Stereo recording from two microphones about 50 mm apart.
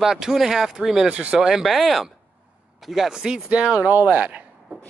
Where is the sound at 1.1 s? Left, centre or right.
Right.